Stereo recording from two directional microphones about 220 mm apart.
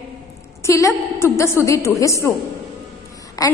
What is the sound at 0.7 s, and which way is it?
A woman's voice, 15° left (ahead or behind).